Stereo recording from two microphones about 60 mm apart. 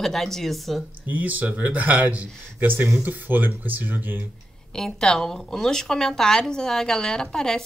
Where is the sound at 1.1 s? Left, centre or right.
Right.